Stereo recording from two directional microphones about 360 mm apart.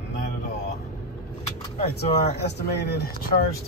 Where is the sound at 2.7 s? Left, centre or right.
Left.